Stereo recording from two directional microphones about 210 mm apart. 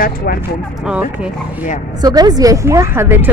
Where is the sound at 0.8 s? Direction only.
5° right (ahead or behind).